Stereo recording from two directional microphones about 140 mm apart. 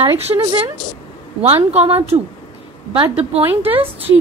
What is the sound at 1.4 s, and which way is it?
Speech, 45° right (ahead or behind).